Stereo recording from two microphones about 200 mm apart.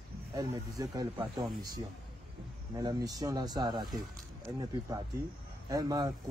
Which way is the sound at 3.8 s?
Centre (ahead or behind).